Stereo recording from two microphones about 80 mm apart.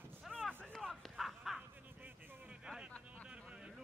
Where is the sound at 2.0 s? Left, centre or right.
Right.